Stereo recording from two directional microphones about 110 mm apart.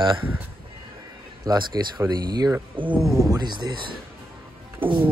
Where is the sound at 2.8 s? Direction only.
50° right (ahead or behind).